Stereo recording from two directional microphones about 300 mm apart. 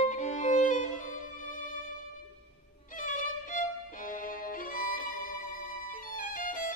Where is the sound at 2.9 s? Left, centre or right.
Left.